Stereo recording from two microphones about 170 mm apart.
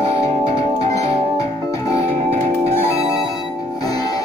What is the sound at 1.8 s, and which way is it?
Music, 40° right (ahead or behind).